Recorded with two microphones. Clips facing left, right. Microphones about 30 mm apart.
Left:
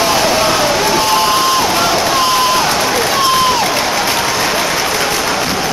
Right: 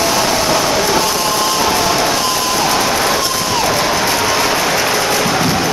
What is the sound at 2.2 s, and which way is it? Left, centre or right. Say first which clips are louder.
Crowd: left 4 dB; left.